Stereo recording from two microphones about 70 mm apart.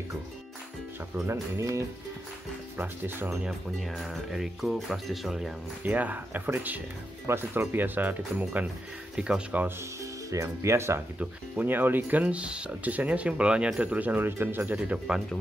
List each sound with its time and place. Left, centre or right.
1.2 s speech: right
3.4 s speech: centre
5.9 s speech: right
9.1 s speech: centre
10.3 s speech: right
11.1 s speech: right